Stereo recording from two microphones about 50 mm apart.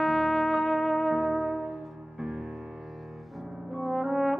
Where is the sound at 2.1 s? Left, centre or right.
Centre.